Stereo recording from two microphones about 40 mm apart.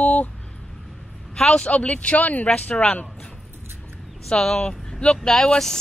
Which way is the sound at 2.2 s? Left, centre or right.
Left.